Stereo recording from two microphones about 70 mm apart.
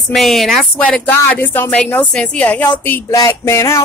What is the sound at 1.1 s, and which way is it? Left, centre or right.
Speech, left.